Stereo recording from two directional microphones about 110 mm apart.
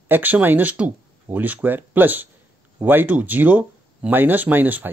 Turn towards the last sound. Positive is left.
turn(degrees=-15)  # may be behind; listen again after turning